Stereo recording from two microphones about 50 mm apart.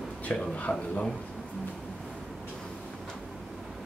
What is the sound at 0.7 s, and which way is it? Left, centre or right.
Speech, left.